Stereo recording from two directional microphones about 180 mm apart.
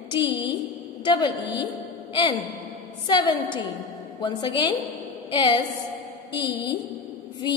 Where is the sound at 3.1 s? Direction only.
25° left (ahead or behind).